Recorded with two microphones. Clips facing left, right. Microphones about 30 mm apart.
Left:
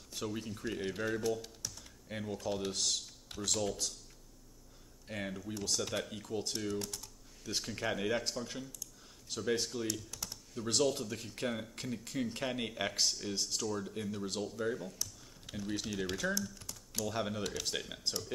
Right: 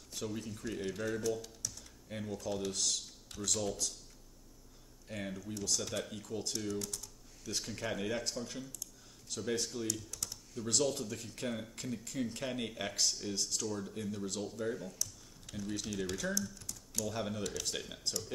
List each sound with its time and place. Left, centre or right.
0.1 s speech: centre
5.0 s speech: centre
15.0 s speech: centre
16.5 s typing: centre
17.0 s speech: centre